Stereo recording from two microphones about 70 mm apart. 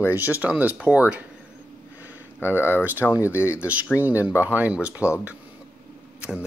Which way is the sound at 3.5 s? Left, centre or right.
Centre.